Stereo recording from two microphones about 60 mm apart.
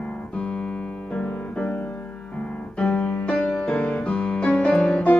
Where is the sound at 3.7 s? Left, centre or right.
Left.